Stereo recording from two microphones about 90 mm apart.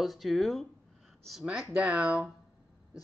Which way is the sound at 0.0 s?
Centre (ahead or behind).